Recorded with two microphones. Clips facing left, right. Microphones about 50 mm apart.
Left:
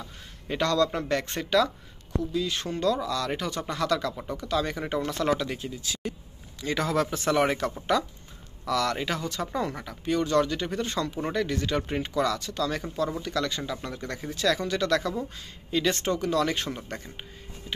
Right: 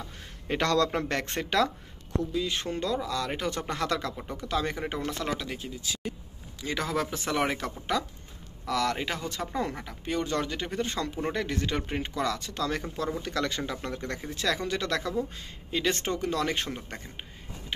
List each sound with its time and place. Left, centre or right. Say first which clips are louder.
0.5 s speech: left 1 dB; right
2.3 s speech: left 3 dB; right
3.4 s speech: left 2 dB; right
5.2 s speech: left 6 dB; centre; by 11.8 s right
11.8 s speech: left 3 dB; centre